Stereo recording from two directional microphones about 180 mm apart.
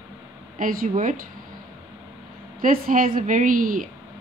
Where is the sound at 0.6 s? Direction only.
50° right (ahead or behind).